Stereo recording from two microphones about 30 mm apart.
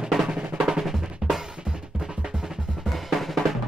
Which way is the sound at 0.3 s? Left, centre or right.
Right.